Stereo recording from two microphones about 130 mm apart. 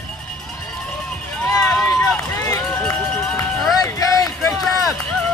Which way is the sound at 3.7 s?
30° left (ahead or behind).